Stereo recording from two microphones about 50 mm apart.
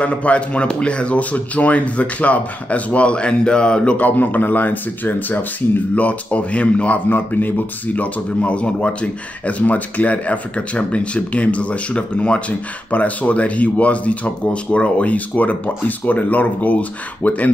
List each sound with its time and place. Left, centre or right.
0.0 s speech: left
3.9 s a man's voice: left
5.9 s speech: left
7.1 s speech: left